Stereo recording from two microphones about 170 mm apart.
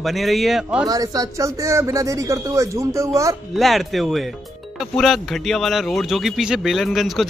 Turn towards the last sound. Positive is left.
turn(degrees=0)  # may be behind; listen again after turning